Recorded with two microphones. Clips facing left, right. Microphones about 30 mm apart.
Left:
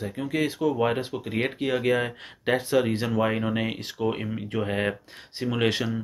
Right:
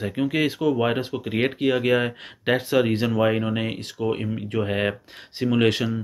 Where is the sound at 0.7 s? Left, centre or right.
Centre.